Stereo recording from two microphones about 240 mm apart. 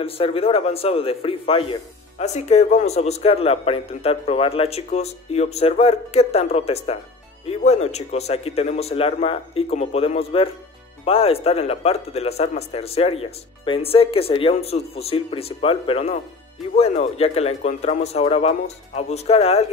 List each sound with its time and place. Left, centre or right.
0.0 s a man's voice: left